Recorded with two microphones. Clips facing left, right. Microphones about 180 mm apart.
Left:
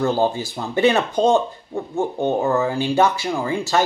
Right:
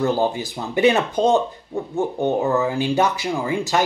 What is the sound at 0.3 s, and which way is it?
Speech, 15° right (ahead or behind).